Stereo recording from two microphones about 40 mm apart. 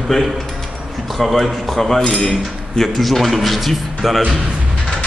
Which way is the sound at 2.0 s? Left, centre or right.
Centre.